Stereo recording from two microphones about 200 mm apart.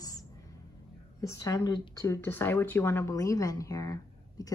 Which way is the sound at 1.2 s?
15° left (ahead or behind).